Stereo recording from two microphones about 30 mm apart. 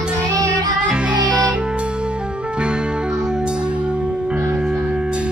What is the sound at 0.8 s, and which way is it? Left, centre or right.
Music, right.